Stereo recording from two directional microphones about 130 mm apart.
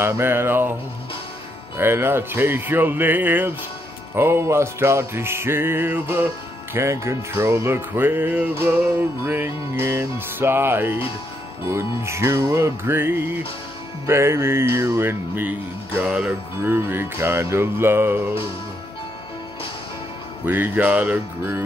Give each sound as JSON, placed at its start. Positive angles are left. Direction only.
{"t": 0.0, "sound": "speech", "side_deg": -20}
{"t": 1.8, "sound": "speech", "side_deg": -20}
{"t": 4.1, "sound": "music", "side_deg": -20}
{"t": 6.7, "sound": "speech", "side_deg": -20}
{"t": 11.7, "sound": "music", "side_deg": -20}
{"t": 16.0, "sound": "speech", "side_deg": -5}
{"t": 20.4, "sound": "speech", "side_deg": -15}